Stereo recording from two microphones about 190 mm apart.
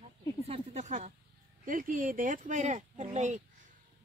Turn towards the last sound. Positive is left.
turn(degrees=-40)  # may be behind; listen again after turning